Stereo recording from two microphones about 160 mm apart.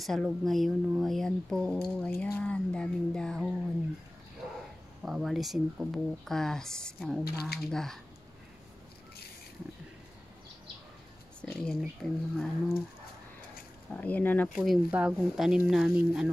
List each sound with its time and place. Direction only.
0.0 s speech: centre (ahead or behind)
5.0 s speech: centre (ahead or behind)
7.2 s speech: 75° left (ahead or behind)
7.7 s speech: 5° left (ahead or behind)
11.4 s speech: 5° left (ahead or behind)
13.9 s speech: 10° left (ahead or behind)
14.5 s speech: 5° right (ahead or behind)